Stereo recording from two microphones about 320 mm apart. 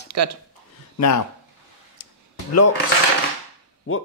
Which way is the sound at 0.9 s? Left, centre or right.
Left.